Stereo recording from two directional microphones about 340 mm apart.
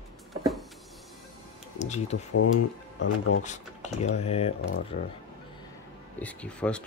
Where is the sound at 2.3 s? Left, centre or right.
Left.